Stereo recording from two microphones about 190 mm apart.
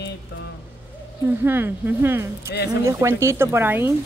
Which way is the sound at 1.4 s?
10° right (ahead or behind).